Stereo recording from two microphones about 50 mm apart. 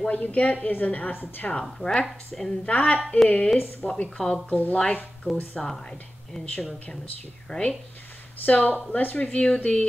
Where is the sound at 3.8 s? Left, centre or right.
Left.